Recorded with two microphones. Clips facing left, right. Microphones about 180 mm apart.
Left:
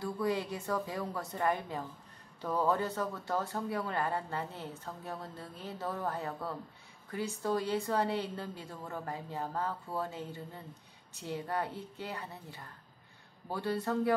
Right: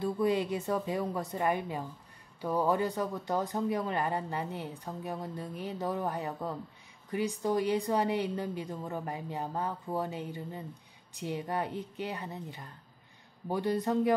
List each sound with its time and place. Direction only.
0.0 s speech: 20° right (ahead or behind)